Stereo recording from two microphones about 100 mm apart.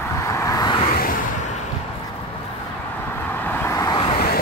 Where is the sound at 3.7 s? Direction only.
35° left (ahead or behind).